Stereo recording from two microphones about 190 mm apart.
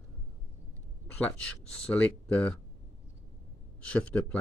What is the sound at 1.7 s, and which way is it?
Speech, 5° left (ahead or behind).